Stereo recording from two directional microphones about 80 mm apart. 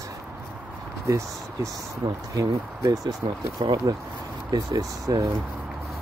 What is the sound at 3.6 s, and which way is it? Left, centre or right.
Speech, right.